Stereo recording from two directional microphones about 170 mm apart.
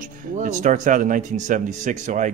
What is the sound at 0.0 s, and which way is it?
Speech, 50° right (ahead or behind).